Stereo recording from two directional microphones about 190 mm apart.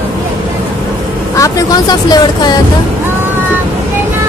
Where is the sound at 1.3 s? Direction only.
15° left (ahead or behind).